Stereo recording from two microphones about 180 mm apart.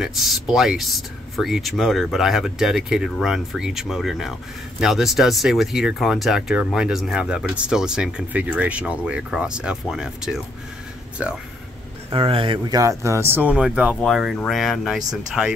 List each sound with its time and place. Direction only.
0.0 s speech: centre (ahead or behind)
12.1 s speech: 30° right (ahead or behind); by 15.5 s 5° right (ahead or behind)